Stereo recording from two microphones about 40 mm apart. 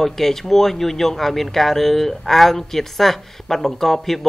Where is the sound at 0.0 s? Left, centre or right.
Centre.